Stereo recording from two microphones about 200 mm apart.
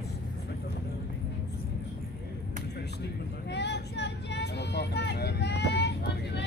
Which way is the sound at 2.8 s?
55° left (ahead or behind).